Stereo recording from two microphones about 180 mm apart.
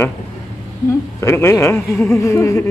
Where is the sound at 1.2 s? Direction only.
15° left (ahead or behind).